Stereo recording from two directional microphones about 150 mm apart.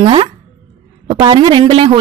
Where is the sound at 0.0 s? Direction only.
40° right (ahead or behind).